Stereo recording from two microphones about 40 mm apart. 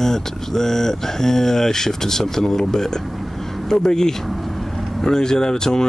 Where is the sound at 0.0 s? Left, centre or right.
Centre.